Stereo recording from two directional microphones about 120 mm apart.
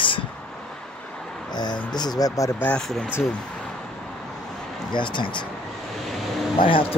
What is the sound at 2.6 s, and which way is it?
Speech, 5° left (ahead or behind).